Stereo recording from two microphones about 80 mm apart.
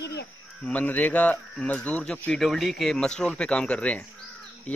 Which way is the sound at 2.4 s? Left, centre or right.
Centre.